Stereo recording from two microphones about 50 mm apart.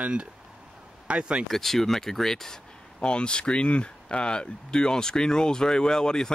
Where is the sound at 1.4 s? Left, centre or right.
Centre.